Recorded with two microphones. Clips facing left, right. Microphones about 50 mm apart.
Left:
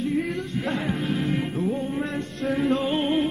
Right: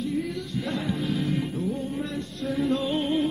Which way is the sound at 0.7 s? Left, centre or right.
Left.